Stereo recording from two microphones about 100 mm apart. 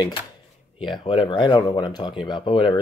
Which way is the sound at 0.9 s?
55° left (ahead or behind).